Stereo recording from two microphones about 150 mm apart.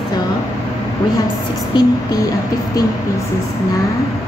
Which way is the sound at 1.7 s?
30° left (ahead or behind).